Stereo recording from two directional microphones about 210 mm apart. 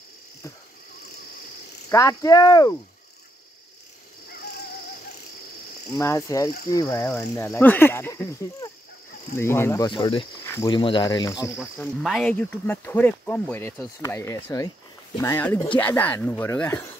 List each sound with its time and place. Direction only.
1.9 s speech: 15° left (ahead or behind)
5.9 s speech: 15° left (ahead or behind)
10.4 s cricket: 10° left (ahead or behind)
10.7 s speech: 25° left (ahead or behind)
11.8 s speech: 5° left (ahead or behind)